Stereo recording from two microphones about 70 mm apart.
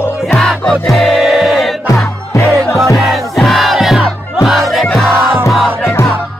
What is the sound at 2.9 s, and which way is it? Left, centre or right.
Crowd, centre.